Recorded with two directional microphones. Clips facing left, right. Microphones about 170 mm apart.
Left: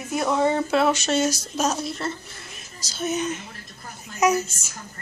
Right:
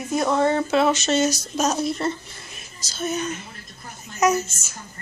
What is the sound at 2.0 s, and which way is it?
Speech, 15° right (ahead or behind).